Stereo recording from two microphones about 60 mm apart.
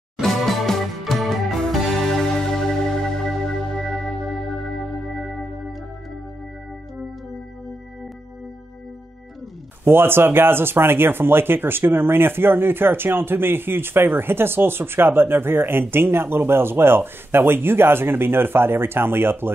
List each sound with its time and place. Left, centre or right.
0.2 s music: centre
5.0 s music: centre
9.8 s speech: right